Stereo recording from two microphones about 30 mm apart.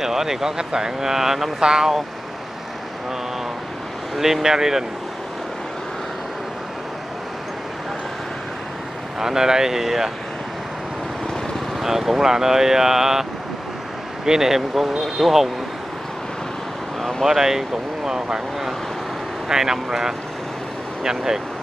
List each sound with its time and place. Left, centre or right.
0.0 s speech: centre
1.6 s speech: right
4.2 s speech: centre
9.2 s speech: centre
11.8 s speech: centre
17.2 s speech: centre